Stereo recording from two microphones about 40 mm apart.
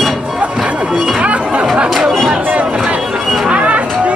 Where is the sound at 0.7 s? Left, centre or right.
Right.